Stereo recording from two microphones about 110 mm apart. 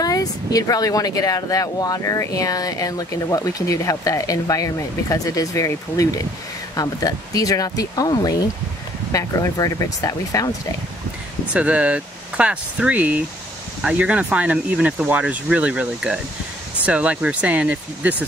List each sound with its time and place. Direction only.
0.0 s speech: 35° left (ahead or behind)
11.5 s speech: 10° right (ahead or behind)